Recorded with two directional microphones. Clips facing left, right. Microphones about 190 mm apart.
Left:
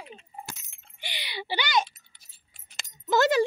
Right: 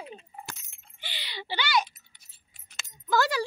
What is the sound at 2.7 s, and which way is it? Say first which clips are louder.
Keys jangling: left 2 dB; 20° left (ahead or behind).